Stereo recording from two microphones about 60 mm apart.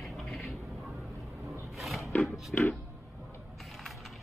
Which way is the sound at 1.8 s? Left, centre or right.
Centre.